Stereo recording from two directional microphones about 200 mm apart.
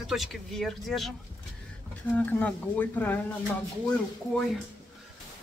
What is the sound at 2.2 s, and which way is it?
Speech, 10° left (ahead or behind).